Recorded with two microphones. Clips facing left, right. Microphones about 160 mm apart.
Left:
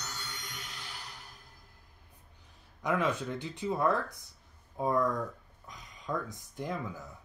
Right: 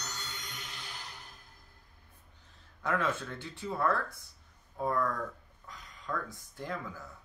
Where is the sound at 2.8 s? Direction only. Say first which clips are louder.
Left 2 dB; 15° left (ahead or behind).